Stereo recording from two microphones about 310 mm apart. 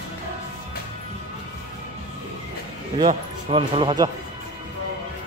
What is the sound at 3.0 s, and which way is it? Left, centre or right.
Speech, centre.